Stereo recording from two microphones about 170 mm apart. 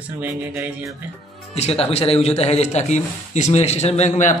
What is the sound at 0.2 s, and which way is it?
Music, 10° right (ahead or behind).